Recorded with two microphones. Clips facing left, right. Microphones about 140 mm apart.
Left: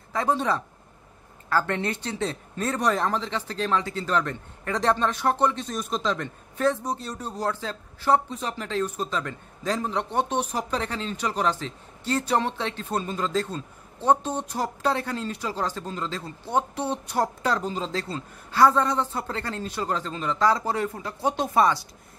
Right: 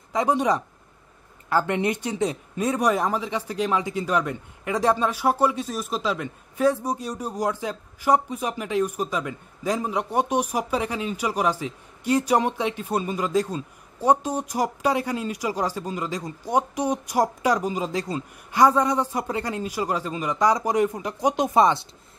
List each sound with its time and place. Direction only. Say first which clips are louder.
0.1 s speech: right 3 dB; 15° right (ahead or behind)